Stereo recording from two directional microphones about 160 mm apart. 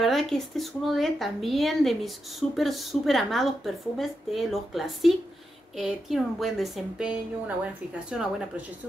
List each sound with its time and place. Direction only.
0.0 s speech: centre (ahead or behind)